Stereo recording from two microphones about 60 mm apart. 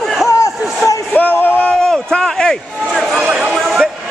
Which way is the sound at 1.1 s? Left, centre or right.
Left.